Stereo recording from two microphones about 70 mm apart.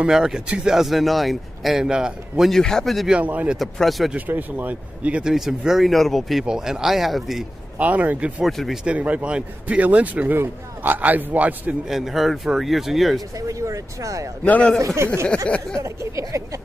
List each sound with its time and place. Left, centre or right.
0.0 s speech: centre
2.5 s speech: centre
3.1 s speech: right
3.5 s speech: centre
4.3 s speech: right
5.3 s speech: centre
7.8 s speech: right
8.5 s speech: centre
8.8 s speech: centre
11.9 s speech: centre
13.4 s speech: right
14.4 s a man's voice: centre
15.8 s speech: right